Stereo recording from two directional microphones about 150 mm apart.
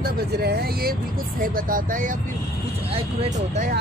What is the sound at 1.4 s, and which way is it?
Speech, 70° right (ahead or behind).